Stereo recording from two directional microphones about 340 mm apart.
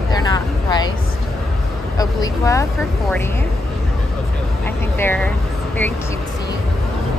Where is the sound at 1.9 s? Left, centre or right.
Centre.